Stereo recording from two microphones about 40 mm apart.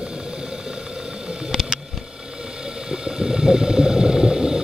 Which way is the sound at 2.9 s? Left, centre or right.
Centre.